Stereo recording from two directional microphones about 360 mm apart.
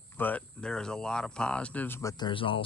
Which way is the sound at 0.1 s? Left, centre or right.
Centre.